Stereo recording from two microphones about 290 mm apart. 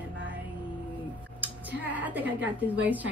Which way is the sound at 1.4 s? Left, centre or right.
Centre.